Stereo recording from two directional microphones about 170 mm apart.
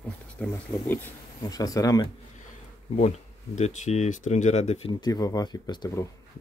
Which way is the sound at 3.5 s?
45° left (ahead or behind).